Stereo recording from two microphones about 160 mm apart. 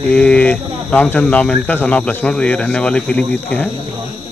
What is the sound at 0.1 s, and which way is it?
Speech, 5° left (ahead or behind).